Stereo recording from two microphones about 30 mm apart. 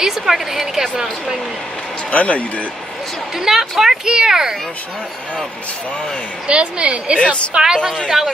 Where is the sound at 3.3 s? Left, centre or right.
Centre.